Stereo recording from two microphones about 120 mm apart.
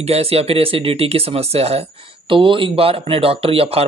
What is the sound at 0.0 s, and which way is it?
Speech, 55° right (ahead or behind).